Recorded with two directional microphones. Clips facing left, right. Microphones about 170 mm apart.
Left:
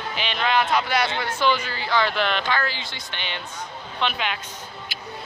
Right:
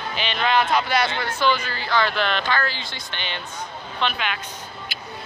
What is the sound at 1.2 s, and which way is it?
Speech, 15° left (ahead or behind).